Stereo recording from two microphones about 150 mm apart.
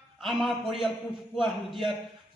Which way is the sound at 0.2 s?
Centre (ahead or behind).